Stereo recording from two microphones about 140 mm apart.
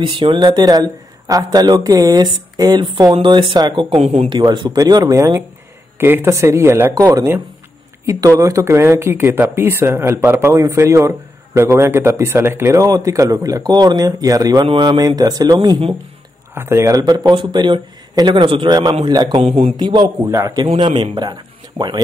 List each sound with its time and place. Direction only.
0.0 s speech: 35° right (ahead or behind)
4.0 s speech: 50° right (ahead or behind)
4.3 s speech: 35° right (ahead or behind)
19.4 s speech: 40° right (ahead or behind); by 20.6 s 25° right (ahead or behind)
20.6 s speech: 35° right (ahead or behind)